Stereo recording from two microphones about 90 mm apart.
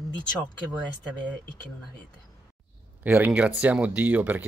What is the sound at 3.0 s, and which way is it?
Speech, 25° right (ahead or behind).